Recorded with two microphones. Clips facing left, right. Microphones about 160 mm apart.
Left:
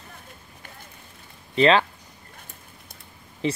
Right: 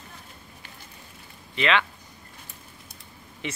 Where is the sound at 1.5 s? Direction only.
35° left (ahead or behind).